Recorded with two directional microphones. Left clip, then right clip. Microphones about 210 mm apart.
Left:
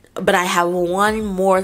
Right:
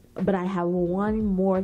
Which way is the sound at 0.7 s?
30° left (ahead or behind).